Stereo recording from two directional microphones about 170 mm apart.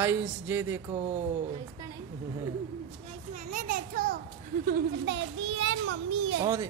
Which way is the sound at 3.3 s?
50° right (ahead or behind).